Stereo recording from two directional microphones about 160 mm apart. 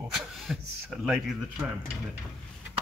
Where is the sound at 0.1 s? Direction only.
Centre (ahead or behind).